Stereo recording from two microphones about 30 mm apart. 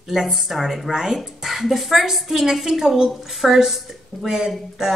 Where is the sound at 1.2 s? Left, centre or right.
Centre; by 3.1 s right.